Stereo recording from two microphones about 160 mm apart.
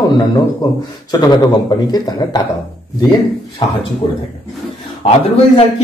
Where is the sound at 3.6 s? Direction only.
35° left (ahead or behind).